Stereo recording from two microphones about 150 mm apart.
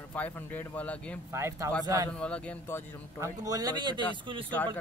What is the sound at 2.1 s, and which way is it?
Speech, 5° left (ahead or behind).